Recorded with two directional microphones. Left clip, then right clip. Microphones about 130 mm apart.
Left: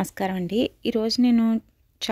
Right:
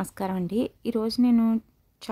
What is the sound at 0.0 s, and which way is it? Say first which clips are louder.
A woman's voice: left 3 dB; 5° left (ahead or behind).